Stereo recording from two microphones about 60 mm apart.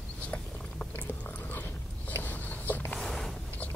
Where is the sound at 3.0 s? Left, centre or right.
Centre.